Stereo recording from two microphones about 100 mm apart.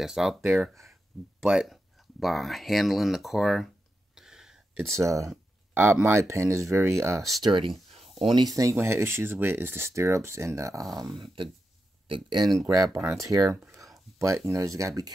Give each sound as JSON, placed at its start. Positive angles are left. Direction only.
{"t": 0.0, "sound": "speech", "side_deg": -5}
{"t": 1.5, "sound": "a sound", "side_deg": -5}
{"t": 4.9, "sound": "speech", "side_deg": -30}
{"t": 7.4, "sound": "speech", "side_deg": -55}
{"t": 7.7, "sound": "a sound", "side_deg": 0}
{"t": 8.3, "sound": "speech", "side_deg": -50}
{"t": 8.7, "sound": "speech", "side_deg": -25}
{"t": 12.1, "sound": "speech", "side_deg": -50}
{"t": 12.6, "sound": "speech", "side_deg": -35}
{"t": 13.9, "sound": "a sound", "side_deg": -30}
{"t": 14.5, "sound": "speech", "side_deg": -35}